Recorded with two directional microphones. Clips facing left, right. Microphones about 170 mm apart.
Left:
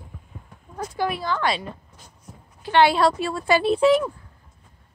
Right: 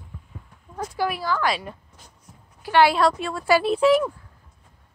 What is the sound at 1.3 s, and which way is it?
Speech, 25° left (ahead or behind).